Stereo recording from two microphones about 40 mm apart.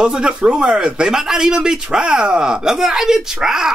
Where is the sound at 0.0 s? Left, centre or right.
Right.